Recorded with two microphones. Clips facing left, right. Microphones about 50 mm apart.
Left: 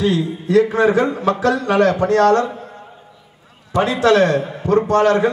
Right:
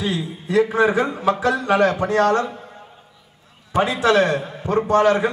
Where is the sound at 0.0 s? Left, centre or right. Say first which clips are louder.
Left 6 dB; centre.